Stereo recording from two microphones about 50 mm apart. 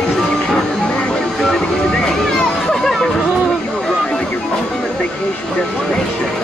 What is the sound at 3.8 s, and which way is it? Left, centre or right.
Vehicle, centre.